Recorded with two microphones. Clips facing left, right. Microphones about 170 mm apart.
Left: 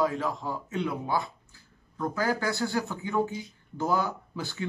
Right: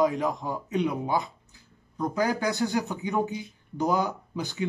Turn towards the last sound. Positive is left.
turn(degrees=-15)  # may be behind; listen again after turning